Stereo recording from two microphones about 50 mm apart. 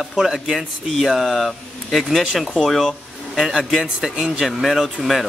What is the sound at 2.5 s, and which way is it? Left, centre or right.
Speech, centre.